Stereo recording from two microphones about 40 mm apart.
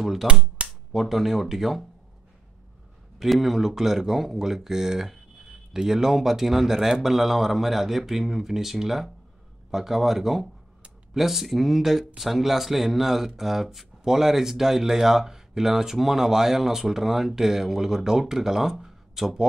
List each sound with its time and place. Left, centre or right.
0.0 s speech: centre
0.3 s speech: right
0.9 s speech: centre
3.2 s speech: centre